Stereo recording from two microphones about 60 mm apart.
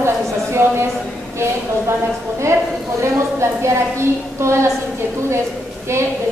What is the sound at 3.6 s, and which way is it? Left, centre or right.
A woman's voice, right.